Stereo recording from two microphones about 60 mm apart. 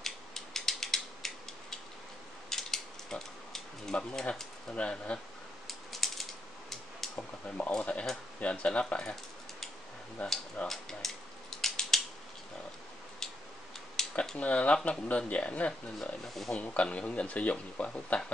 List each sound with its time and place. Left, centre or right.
0.0 s mechanisms: centre
2.5 s a sound: centre
3.9 s speech: centre
4.7 s speech: centre
5.7 s typewriter: centre
7.0 s a sound: centre
7.8 s speech: left
10.2 s speech: centre
11.6 s crushing: centre
13.2 s tick-tock: centre
14.0 s a sound: centre
14.4 s speech: left